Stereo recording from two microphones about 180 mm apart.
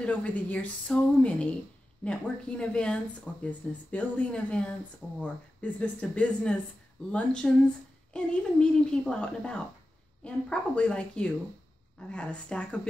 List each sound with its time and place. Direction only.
0.0 s a woman's voice: 5° left (ahead or behind)